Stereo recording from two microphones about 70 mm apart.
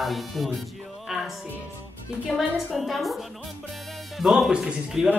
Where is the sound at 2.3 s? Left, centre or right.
Centre.